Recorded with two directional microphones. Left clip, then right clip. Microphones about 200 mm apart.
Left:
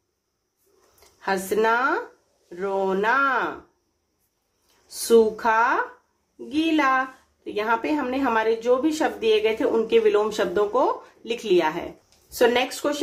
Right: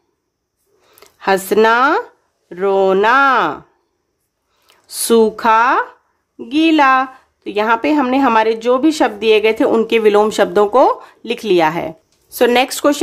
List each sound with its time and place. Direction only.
0.9 s a woman's voice: 45° right (ahead or behind)
4.8 s a woman's voice: 40° right (ahead or behind)